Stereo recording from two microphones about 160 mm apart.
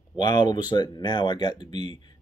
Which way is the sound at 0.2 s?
25° left (ahead or behind).